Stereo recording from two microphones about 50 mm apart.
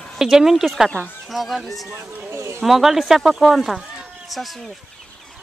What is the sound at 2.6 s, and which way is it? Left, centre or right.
Speech, centre.